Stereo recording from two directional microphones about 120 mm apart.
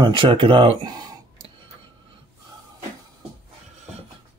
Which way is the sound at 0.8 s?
35° right (ahead or behind).